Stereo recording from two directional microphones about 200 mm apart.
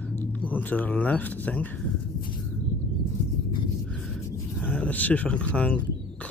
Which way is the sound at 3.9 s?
10° left (ahead or behind).